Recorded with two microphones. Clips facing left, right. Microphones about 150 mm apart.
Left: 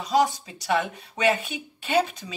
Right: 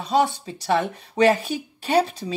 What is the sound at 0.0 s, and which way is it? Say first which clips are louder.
Speech: right 1 dB; 30° right (ahead or behind).